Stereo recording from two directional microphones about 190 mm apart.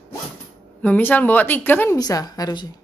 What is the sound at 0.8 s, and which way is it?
A woman's voice, 10° left (ahead or behind).